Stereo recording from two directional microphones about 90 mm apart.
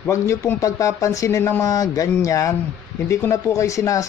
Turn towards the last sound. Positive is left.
turn(degrees=35)  # may be behind; listen again after turning